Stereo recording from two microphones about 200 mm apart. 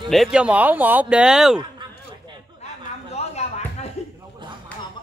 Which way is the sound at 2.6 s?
30° left (ahead or behind).